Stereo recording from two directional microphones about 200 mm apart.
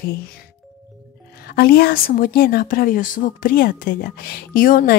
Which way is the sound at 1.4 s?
50° left (ahead or behind).